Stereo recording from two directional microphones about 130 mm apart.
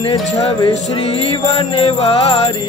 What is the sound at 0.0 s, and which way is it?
Music, 40° left (ahead or behind).